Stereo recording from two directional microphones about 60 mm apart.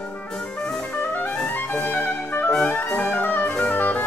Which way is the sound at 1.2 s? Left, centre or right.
Centre.